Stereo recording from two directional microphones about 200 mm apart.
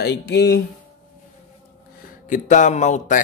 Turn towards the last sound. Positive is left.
turn(degrees=40)  # may be behind; listen again after turning